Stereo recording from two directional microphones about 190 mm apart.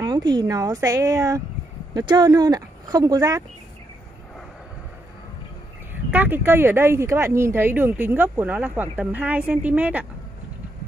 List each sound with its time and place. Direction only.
0.0 s speech: 20° right (ahead or behind)
6.1 s speech: 10° right (ahead or behind)